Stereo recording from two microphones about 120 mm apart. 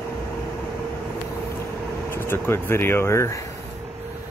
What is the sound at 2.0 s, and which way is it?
Speech, 20° left (ahead or behind).